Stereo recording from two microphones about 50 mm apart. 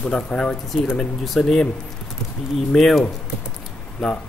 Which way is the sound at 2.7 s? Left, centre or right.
Centre.